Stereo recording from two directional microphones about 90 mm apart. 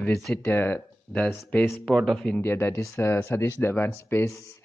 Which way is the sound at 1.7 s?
5° left (ahead or behind).